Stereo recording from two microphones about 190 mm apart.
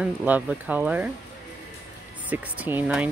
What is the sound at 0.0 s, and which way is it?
Speech, 10° right (ahead or behind).